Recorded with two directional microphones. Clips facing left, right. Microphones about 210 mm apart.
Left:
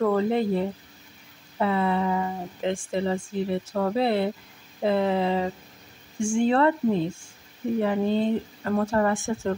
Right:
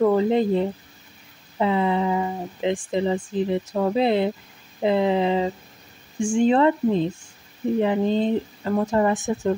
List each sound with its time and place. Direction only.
0.0 s speech: 15° right (ahead or behind)